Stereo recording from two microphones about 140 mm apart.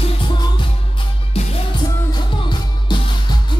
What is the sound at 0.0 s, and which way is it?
Music, 35° left (ahead or behind).